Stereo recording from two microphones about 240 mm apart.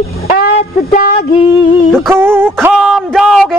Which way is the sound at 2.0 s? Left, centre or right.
Centre.